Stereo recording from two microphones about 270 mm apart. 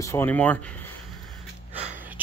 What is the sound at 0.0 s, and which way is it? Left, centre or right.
Speech, centre.